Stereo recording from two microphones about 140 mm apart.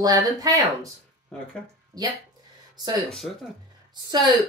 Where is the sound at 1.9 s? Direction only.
25° right (ahead or behind).